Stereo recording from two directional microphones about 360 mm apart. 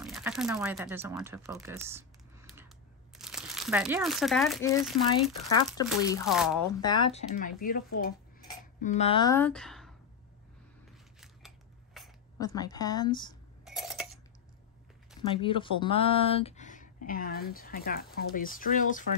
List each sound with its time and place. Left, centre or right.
0.0 s speech: centre
3.2 s speech: centre
6.2 s speech: centre
6.8 s speech: centre
11.1 s scissors: centre
13.7 s a sound: centre
15.2 s speech: centre